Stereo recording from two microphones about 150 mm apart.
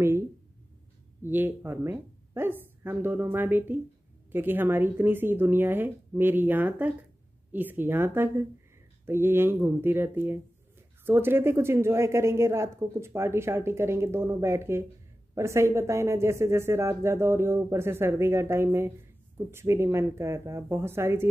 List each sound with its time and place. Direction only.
1.2 s speech: 15° right (ahead or behind)